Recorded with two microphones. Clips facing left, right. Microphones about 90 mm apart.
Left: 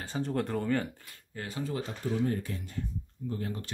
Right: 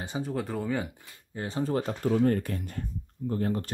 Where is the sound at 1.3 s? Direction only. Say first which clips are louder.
Right 5 dB; 25° right (ahead or behind).